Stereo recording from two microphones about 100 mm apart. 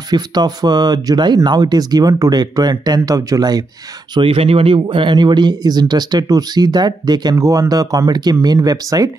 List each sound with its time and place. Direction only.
0.1 s speech: 45° right (ahead or behind)
4.1 s speech: 60° right (ahead or behind)
4.7 s speech: 55° right (ahead or behind)
7.3 s speech: 35° right (ahead or behind)